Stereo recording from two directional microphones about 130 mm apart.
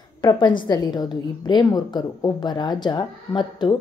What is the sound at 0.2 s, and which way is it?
A woman's voice, 35° left (ahead or behind).